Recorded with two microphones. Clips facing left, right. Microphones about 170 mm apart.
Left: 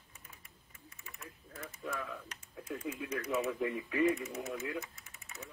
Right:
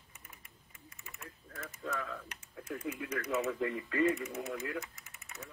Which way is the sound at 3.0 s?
15° left (ahead or behind).